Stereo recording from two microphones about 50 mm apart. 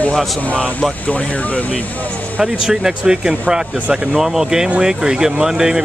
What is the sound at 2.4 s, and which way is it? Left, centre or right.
Speech, centre.